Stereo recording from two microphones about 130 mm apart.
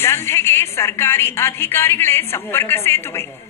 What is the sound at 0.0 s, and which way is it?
A woman's voice, 20° left (ahead or behind).